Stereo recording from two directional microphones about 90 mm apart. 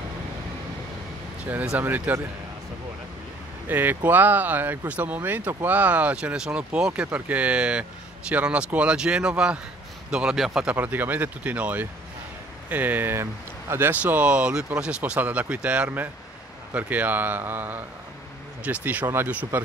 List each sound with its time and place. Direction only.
1.5 s speech: 20° right (ahead or behind)
3.6 s speech: 20° right (ahead or behind)
10.8 s speech: 20° right (ahead or behind)